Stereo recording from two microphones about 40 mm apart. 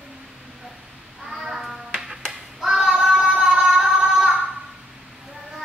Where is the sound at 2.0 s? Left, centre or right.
Centre.